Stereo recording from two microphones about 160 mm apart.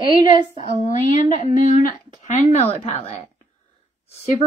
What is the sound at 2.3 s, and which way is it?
Speech, 45° left (ahead or behind).